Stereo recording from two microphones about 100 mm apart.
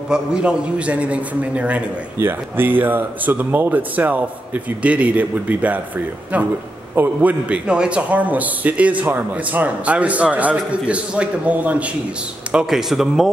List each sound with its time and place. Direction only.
0.1 s a man's voice: 10° right (ahead or behind)